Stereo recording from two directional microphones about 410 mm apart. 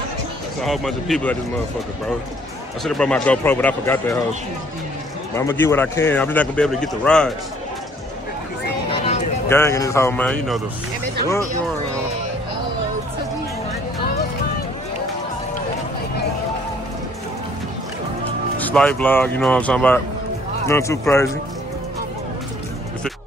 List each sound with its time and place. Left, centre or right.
0.7 s speech: centre
2.8 s speech: centre
5.3 s speech: centre
8.9 s speech: centre
18.6 s speech: centre